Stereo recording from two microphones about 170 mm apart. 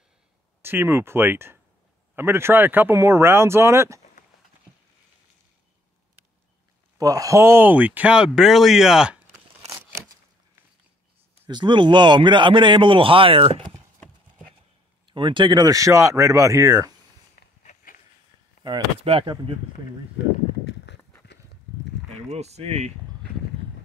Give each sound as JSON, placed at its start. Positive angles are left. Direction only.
{"t": 0.6, "sound": "speech", "side_deg": -15}
{"t": 7.0, "sound": "speech", "side_deg": -20}
{"t": 11.4, "sound": "a man's voice", "side_deg": -25}
{"t": 15.0, "sound": "a man's voice", "side_deg": -30}
{"t": 17.4, "sound": "a sound", "side_deg": 55}
{"t": 18.6, "sound": "speech", "side_deg": -30}
{"t": 20.6, "sound": "horse", "side_deg": 90}
{"t": 22.1, "sound": "speech", "side_deg": -40}